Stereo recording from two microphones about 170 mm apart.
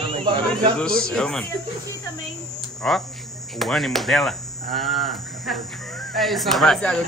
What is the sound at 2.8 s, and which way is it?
Speech, 5° left (ahead or behind).